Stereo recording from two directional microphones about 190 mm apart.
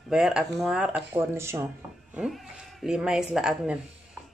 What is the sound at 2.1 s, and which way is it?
Speech, centre (ahead or behind).